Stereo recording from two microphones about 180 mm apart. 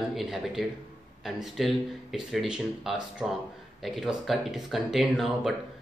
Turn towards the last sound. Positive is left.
turn(degrees=0)  # may be behind; listen again after turning